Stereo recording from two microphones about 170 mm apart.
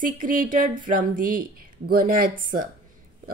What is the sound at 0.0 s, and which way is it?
Speech, 50° right (ahead or behind).